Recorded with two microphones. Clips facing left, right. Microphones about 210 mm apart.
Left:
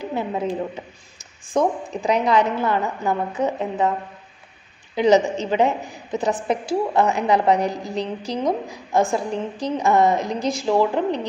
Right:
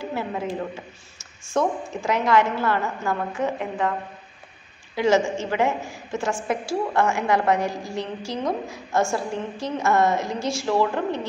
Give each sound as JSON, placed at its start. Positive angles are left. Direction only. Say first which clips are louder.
{"t": 0.0, "sound": "a woman's voice", "louder": "left 3 dB", "side_deg": 20}
{"t": 4.9, "sound": "a woman's voice", "louder": "left 4 dB", "side_deg": 20}